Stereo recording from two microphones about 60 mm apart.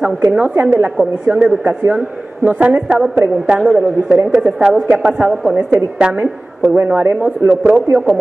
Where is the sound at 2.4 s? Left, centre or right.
Right.